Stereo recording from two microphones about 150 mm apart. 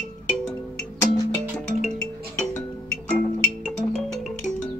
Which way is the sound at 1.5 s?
5° left (ahead or behind).